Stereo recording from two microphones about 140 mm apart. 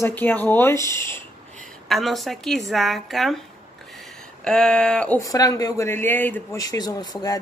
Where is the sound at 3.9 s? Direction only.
5° left (ahead or behind).